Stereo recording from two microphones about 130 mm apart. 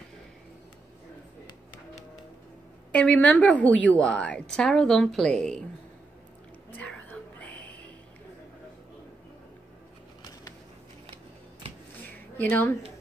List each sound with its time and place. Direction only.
2.9 s a woman's voice: 10° left (ahead or behind)
6.8 s music: 10° left (ahead or behind)
12.4 s a woman's voice: 15° left (ahead or behind)